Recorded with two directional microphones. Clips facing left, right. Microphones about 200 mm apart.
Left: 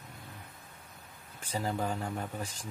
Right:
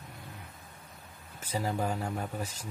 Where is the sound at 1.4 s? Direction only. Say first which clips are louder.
Right 1 dB; 10° right (ahead or behind).